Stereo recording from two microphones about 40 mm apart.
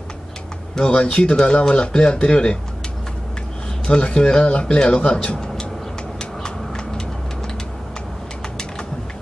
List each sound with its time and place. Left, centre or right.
0.8 s speech: left
3.8 s speech: left
6.1 s vehicle: centre